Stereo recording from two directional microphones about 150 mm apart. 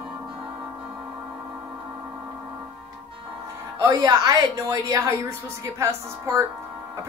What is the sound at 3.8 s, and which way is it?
A woman's voice, 25° right (ahead or behind).